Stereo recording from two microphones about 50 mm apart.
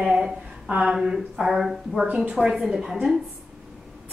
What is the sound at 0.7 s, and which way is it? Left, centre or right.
Speech, right.